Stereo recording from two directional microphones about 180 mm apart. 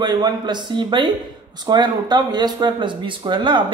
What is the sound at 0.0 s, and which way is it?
Speech, 25° right (ahead or behind).